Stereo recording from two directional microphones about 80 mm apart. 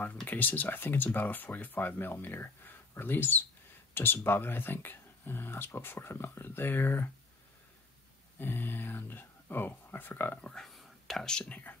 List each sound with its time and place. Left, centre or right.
0.3 s speech: left
8.4 s speech: left
10.5 s speech: centre